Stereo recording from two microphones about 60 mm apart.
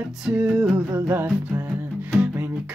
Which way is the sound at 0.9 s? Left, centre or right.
Right.